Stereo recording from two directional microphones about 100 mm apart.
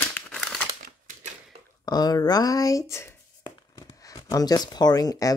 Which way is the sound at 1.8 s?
45° left (ahead or behind).